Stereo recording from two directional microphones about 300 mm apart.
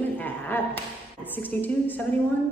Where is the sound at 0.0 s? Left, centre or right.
Centre.